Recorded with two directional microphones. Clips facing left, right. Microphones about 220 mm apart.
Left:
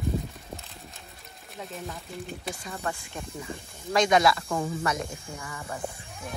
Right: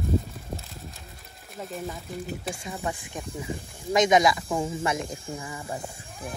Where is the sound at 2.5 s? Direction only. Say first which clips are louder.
Right 2 dB; 15° right (ahead or behind).